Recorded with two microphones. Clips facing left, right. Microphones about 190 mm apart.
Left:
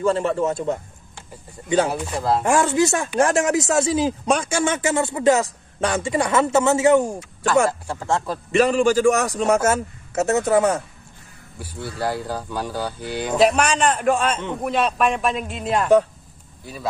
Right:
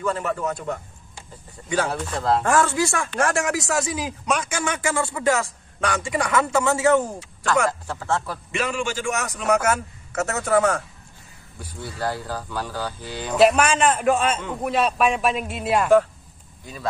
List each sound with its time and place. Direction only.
0.0 s speech: 30° left (ahead or behind)
1.9 s speech: 10° left (ahead or behind)
2.5 s speech: 20° left (ahead or behind)
8.5 s a man's voice: 35° left (ahead or behind); by 10.8 s 20° left (ahead or behind)
12.0 s speech: 15° left (ahead or behind)
13.4 s speech: centre (ahead or behind)